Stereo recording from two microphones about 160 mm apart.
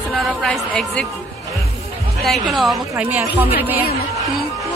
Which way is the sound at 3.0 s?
10° right (ahead or behind).